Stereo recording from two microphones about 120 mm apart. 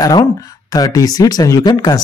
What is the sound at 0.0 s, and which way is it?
A man's voice, 30° left (ahead or behind).